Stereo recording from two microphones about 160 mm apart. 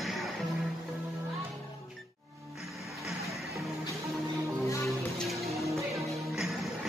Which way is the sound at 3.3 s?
Centre (ahead or behind).